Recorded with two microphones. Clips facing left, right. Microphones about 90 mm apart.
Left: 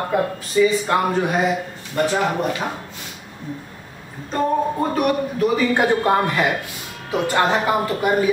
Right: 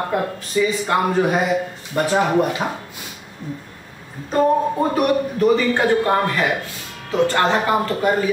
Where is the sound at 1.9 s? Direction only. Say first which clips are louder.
Even; 25° right (ahead or behind).